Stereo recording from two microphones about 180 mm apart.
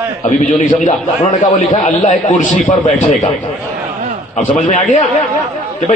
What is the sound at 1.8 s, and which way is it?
A man's voice, 45° left (ahead or behind).